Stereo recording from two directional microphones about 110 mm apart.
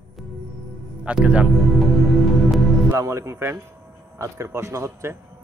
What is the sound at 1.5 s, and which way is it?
Music, centre (ahead or behind).